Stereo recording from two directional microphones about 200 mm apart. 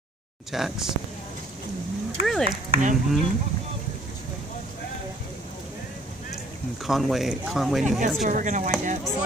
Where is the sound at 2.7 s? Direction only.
40° right (ahead or behind).